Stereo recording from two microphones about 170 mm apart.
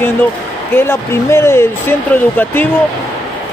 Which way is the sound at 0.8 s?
15° left (ahead or behind).